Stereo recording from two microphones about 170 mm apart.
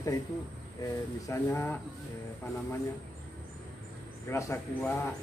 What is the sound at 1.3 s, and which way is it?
Speech, 15° left (ahead or behind).